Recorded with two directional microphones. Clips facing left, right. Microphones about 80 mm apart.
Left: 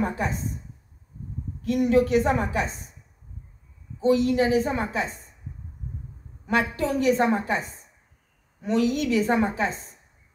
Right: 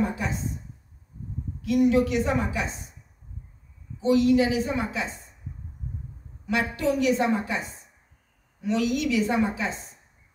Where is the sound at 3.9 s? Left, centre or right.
Left.